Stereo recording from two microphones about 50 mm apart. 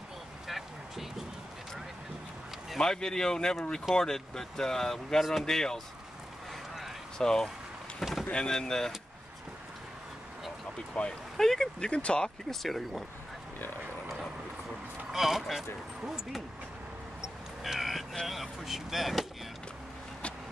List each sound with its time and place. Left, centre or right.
0.5 s vehicle: centre
2.8 s speech: centre
7.2 s speech: centre
8.0 s boat: centre
8.3 s speech: centre
10.9 s speech: centre
11.3 s speech: centre
11.9 s speech: left
12.4 s speech: centre
15.1 s speech: centre
17.6 s vehicle: centre
18.2 s speech: centre